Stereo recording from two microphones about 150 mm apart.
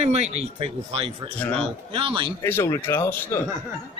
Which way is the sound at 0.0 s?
45° right (ahead or behind).